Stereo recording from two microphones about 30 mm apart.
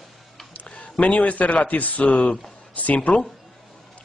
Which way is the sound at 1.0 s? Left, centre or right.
Left.